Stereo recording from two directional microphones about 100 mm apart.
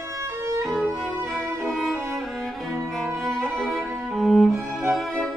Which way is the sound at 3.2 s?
5° left (ahead or behind).